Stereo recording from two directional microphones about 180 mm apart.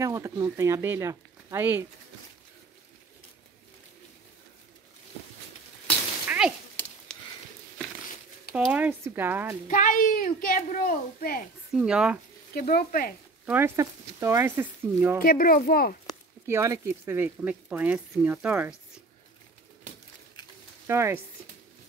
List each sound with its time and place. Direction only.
0.0 s speech: 15° right (ahead or behind)
6.2 s a sound: 5° right (ahead or behind)
8.5 s speech: 5° right (ahead or behind)
9.7 s a woman's voice: 45° left (ahead or behind)
11.7 s speech: 5° right (ahead or behind)
12.5 s speech: 55° left (ahead or behind)
13.5 s speech: 15° right (ahead or behind)
15.2 s a woman's voice: 55° left (ahead or behind)
16.4 s speech: 15° right (ahead or behind)
20.8 s speech: 15° right (ahead or behind)